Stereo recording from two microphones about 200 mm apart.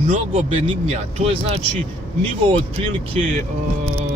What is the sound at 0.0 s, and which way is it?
Speech, 30° right (ahead or behind).